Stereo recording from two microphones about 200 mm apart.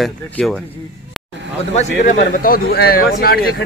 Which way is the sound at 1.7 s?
40° left (ahead or behind).